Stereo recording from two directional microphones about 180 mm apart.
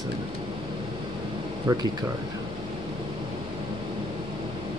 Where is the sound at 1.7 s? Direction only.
20° right (ahead or behind).